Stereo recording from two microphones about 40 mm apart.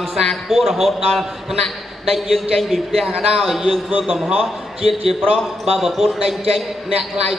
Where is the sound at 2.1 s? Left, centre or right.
Centre.